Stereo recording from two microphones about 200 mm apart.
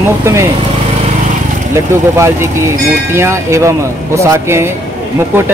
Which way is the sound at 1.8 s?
15° right (ahead or behind).